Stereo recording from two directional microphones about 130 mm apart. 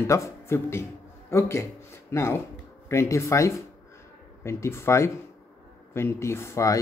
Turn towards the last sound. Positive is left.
turn(degrees=25)  # may be behind; listen again after turning